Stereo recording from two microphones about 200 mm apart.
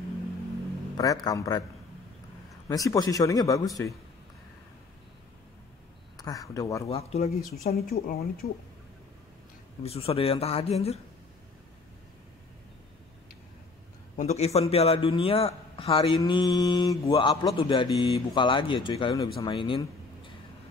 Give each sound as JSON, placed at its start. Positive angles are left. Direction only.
{"t": 0.9, "sound": "a man's voice", "side_deg": 20}
{"t": 2.7, "sound": "speech", "side_deg": 15}
{"t": 6.1, "sound": "speech", "side_deg": 15}
{"t": 6.9, "sound": "speech", "side_deg": 30}
{"t": 7.7, "sound": "speech", "side_deg": 50}
{"t": 9.8, "sound": "a man's voice", "side_deg": 30}
{"t": 14.1, "sound": "a man's voice", "side_deg": 35}